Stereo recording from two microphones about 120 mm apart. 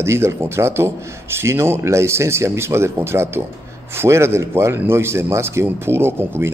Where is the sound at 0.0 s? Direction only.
20° right (ahead or behind).